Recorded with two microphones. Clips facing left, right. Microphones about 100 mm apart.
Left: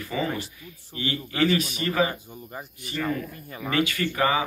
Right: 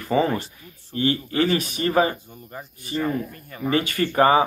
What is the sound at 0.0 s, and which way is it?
Speech, 45° right (ahead or behind).